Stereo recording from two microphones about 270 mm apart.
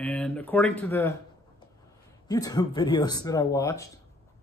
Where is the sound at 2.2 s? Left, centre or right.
Centre.